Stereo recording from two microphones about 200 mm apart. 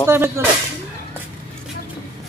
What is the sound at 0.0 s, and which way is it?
Speech, 10° right (ahead or behind).